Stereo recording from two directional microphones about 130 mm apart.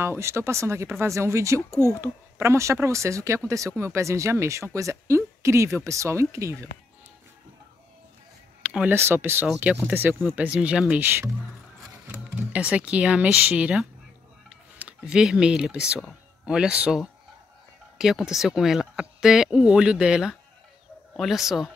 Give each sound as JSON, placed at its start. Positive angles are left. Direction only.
{"t": 0.0, "sound": "speech", "side_deg": -20}
{"t": 8.6, "sound": "speech", "side_deg": -10}